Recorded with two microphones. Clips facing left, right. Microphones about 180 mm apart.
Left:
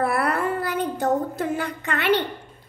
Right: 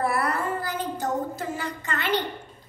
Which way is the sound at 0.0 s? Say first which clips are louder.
Left 3 dB; 60° left (ahead or behind).